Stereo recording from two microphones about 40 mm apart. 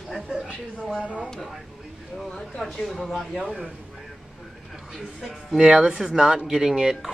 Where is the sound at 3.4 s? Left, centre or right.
Centre.